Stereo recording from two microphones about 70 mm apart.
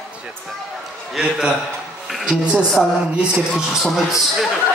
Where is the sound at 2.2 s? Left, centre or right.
Centre.